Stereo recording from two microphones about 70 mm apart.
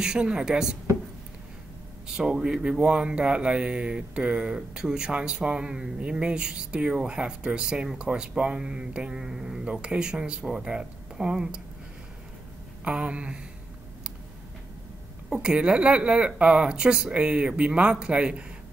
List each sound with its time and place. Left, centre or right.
0.0 s speech: centre
2.0 s speech: centre
12.8 s speech: centre
15.2 s speech: centre